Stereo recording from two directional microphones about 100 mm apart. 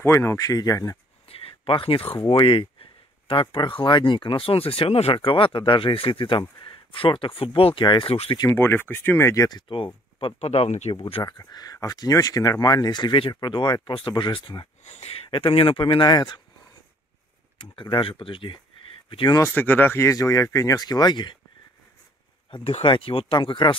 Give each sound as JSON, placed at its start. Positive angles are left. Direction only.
{"t": 0.0, "sound": "speech", "side_deg": 25}
{"t": 1.3, "sound": "speech", "side_deg": 70}
{"t": 8.1, "sound": "speech", "side_deg": 75}
{"t": 8.5, "sound": "speech", "side_deg": 25}
{"t": 9.3, "sound": "speech", "side_deg": 40}
{"t": 10.2, "sound": "speech", "side_deg": 75}
{"t": 11.2, "sound": "speech", "side_deg": 45}
{"t": 14.9, "sound": "speech", "side_deg": 80}
{"t": 17.6, "sound": "speech", "side_deg": 50}
{"t": 19.5, "sound": "speech", "side_deg": 15}
{"t": 22.6, "sound": "speech", "side_deg": 75}